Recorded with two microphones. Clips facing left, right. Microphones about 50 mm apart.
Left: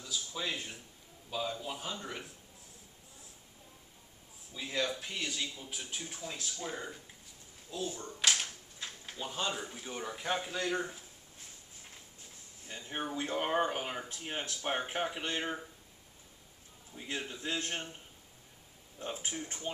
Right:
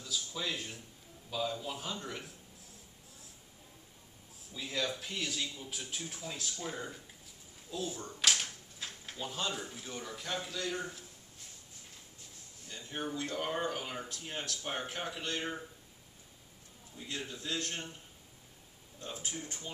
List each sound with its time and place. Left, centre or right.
0.0 s a sound: centre
1.3 s a man's voice: centre
4.6 s a man's voice: centre
12.6 s speech: left
16.9 s speech: left
18.9 s speech: left